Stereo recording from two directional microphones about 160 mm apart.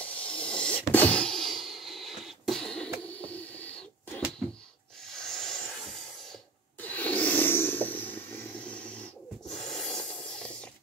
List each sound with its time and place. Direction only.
0.0 s music: 10° left (ahead or behind)
3.2 s owl: 10° left (ahead or behind)
5.1 s a sound: 5° left (ahead or behind)